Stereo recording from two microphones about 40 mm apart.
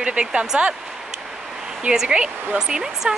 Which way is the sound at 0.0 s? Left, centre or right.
Right.